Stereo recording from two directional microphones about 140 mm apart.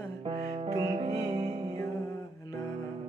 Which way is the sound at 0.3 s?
50° right (ahead or behind).